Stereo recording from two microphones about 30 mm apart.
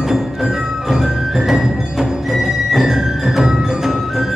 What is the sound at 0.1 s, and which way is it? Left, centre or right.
Music, centre.